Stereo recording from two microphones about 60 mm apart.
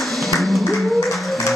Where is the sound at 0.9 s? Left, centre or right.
Left.